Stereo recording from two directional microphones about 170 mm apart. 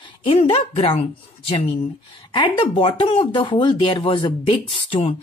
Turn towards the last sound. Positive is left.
turn(degrees=30)  # may be behind; listen again after turning